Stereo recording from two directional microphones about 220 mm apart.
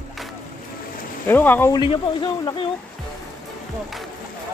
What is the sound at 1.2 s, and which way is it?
Speech, 10° left (ahead or behind).